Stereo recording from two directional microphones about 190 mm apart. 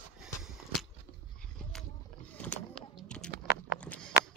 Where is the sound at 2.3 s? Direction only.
5° left (ahead or behind).